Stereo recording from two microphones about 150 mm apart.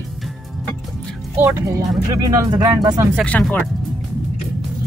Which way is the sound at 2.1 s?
25° right (ahead or behind).